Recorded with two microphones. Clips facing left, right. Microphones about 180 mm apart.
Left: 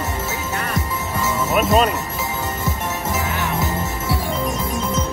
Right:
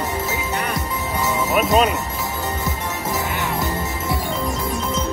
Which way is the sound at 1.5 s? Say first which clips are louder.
Left 1 dB; centre (ahead or behind).